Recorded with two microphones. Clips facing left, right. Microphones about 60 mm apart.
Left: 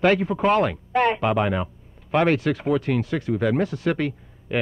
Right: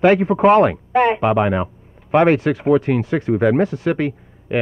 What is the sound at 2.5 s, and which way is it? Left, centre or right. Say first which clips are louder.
Speech: right 7 dB; centre.